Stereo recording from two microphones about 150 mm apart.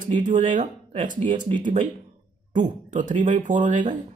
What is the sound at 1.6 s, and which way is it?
Speech, 55° right (ahead or behind).